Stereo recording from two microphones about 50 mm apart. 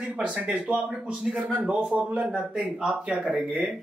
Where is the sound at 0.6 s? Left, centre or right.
Right.